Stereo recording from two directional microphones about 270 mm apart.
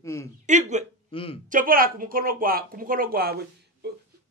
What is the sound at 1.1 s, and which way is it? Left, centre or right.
Speech, centre.